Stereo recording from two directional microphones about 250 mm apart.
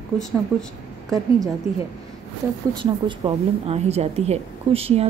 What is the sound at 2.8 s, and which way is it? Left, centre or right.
A woman's voice, right.